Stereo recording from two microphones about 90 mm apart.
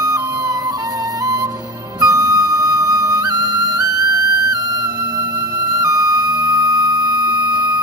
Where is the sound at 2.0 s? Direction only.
40° right (ahead or behind).